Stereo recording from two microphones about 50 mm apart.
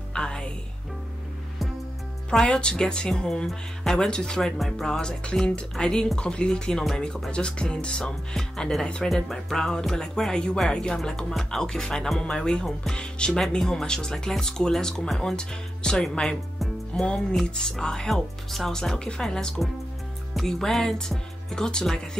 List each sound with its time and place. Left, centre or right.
0.1 s music: centre
2.3 s speech: centre
9.1 s speech: centre
17.0 s speech: centre